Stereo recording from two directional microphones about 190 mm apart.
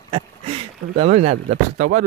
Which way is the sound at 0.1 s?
30° right (ahead or behind).